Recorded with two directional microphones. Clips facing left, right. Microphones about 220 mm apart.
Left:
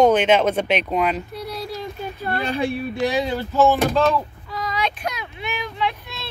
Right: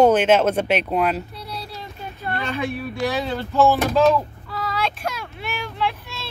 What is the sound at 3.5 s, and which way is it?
Speech, centre (ahead or behind).